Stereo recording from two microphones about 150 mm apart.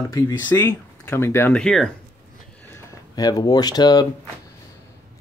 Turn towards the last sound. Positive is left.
turn(degrees=25)  # may be behind; listen again after turning